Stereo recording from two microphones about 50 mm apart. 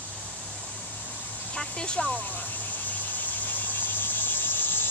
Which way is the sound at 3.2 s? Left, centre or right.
Left.